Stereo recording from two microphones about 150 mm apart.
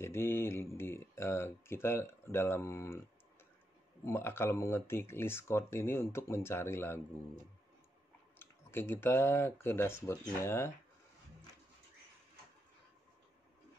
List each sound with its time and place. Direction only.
0.0 s speech: 15° left (ahead or behind)
4.0 s speech: 15° left (ahead or behind)
8.4 s speech: 15° left (ahead or behind)